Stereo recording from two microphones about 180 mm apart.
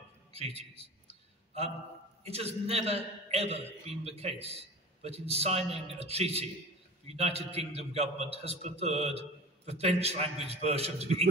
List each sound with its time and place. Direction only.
0.3 s a man's voice: 35° right (ahead or behind)
2.2 s a man's voice: 35° right (ahead or behind)